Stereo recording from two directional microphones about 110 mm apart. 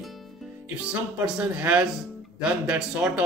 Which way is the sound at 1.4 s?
10° right (ahead or behind).